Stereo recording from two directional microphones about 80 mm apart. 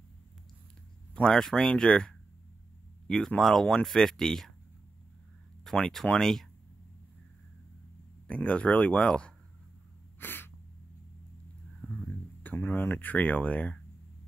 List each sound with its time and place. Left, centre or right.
1.1 s speech: centre
5.6 s speech: centre
8.3 s speech: centre
10.1 s sneeze: left
11.8 s a sound: centre
12.4 s speech: left